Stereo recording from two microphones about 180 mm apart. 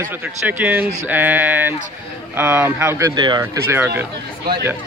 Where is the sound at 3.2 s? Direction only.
25° right (ahead or behind).